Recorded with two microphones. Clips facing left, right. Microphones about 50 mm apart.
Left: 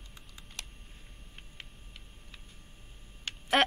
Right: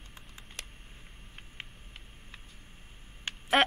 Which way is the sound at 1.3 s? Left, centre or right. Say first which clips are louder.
Right 4 dB; right.